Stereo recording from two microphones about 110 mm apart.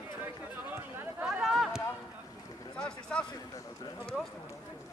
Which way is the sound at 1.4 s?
Centre (ahead or behind).